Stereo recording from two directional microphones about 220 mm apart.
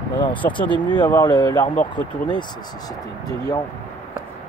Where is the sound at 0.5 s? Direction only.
20° left (ahead or behind).